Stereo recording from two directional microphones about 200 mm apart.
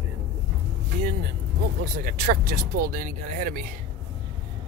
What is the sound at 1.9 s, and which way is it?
Speech, 45° right (ahead or behind).